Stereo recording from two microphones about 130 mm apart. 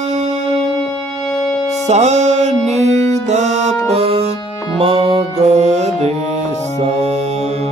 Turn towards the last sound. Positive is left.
turn(degrees=-55)  # may be behind; listen again after turning